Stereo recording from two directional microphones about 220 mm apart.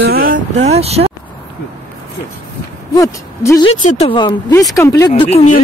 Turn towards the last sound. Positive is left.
turn(degrees=30)  # may be behind; listen again after turning